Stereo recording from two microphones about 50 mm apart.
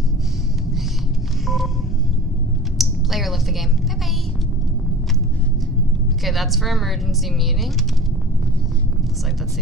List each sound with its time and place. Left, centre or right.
1.4 s telephone dialing: centre
2.8 s a sound: centre
6.2 s a woman's voice: centre